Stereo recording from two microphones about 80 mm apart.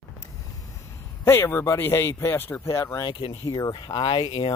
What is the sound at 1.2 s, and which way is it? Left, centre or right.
Speech, left.